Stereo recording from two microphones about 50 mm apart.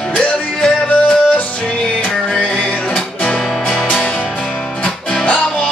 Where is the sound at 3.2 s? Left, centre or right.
Centre.